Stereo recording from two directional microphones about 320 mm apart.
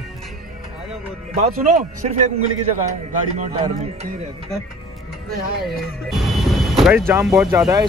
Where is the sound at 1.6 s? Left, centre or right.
Right.